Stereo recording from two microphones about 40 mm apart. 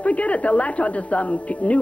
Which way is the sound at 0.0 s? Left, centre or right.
Left.